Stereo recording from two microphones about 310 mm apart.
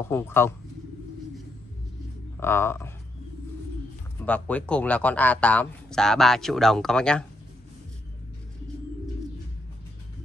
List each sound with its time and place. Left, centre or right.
0.1 s speech: centre
2.4 s speech: centre
4.3 s speech: centre